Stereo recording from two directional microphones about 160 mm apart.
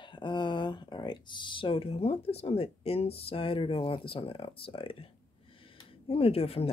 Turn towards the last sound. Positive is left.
turn(degrees=40)  # may be behind; listen again after turning